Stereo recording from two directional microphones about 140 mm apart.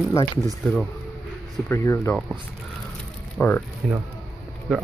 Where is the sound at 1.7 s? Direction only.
20° left (ahead or behind).